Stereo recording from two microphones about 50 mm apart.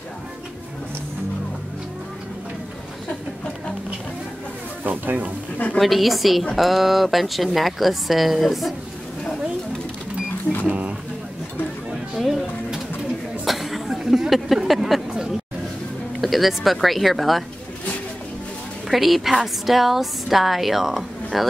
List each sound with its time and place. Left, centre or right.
4.8 s speech: right
5.8 s a woman's voice: centre
10.7 s a sound: right
12.2 s a sound: centre
16.2 s speech: centre
18.9 s a woman's voice: centre